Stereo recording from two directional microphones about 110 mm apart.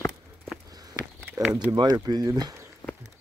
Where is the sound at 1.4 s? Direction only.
10° right (ahead or behind).